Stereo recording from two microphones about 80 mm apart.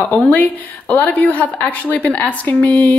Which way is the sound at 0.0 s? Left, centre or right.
Left.